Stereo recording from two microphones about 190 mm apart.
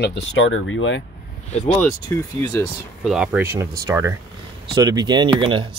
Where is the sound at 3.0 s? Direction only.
5° right (ahead or behind).